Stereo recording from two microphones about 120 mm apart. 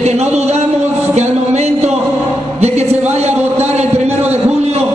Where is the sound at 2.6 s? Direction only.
65° right (ahead or behind).